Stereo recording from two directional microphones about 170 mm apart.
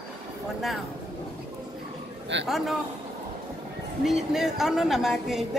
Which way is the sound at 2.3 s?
90° right.